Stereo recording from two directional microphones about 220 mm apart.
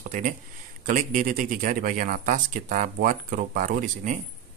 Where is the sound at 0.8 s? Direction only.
40° right (ahead or behind).